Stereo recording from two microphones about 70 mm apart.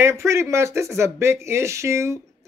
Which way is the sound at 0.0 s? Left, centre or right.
Right.